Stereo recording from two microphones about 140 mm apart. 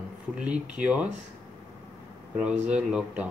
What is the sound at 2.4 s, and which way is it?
Speech, 5° right (ahead or behind).